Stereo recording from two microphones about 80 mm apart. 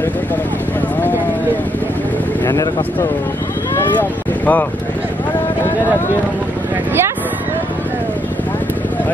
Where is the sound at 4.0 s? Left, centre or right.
Left.